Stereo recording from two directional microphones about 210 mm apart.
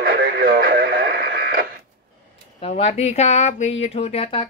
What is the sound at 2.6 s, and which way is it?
Speech, 30° left (ahead or behind).